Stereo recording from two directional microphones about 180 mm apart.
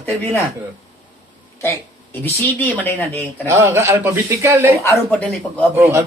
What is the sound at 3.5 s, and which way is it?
Speech, 15° right (ahead or behind).